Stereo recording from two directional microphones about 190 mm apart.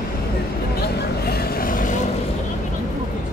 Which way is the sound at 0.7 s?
55° left (ahead or behind).